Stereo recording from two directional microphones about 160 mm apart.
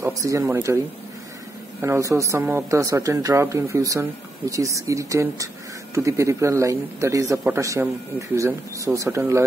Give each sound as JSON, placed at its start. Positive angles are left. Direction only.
{"t": 0.0, "sound": "speech", "side_deg": -20}
{"t": 1.8, "sound": "speech", "side_deg": -15}